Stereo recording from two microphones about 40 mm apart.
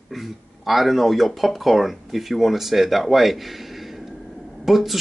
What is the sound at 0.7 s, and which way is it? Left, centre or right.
Speech, centre.